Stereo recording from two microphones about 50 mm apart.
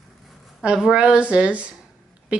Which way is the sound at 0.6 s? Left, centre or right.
Centre.